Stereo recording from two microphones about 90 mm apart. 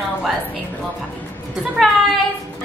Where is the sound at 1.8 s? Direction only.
Centre (ahead or behind).